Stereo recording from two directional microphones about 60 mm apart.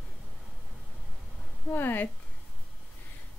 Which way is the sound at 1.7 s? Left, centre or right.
Left.